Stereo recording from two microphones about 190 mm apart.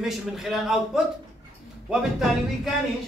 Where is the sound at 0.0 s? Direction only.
Centre (ahead or behind).